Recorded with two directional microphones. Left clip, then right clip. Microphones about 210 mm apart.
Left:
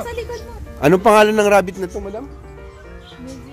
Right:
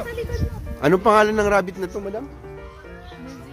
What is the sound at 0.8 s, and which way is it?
A man's voice, 10° left (ahead or behind).